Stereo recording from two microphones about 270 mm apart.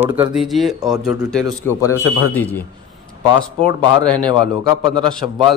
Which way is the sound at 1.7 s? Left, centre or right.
Centre.